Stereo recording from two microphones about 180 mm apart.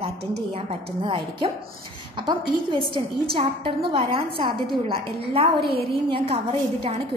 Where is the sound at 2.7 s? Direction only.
30° right (ahead or behind).